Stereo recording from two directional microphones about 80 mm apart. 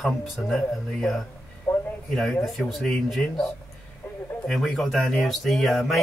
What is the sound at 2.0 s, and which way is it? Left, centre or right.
Speech, centre.